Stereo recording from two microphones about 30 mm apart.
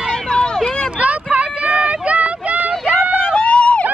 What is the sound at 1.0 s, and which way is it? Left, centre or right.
Vehicle, right.